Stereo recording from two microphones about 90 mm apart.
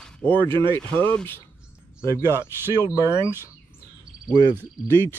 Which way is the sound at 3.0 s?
30° right (ahead or behind).